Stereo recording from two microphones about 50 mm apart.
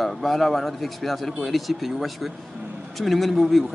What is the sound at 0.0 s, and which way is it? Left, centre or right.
Speech, centre.